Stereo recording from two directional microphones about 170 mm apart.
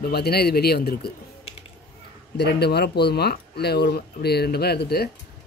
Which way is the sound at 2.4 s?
75° left (ahead or behind).